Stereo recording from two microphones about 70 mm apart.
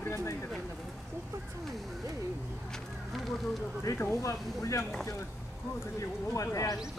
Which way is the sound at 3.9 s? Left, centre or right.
Left.